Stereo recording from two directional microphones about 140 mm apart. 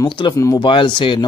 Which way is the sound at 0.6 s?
35° left (ahead or behind).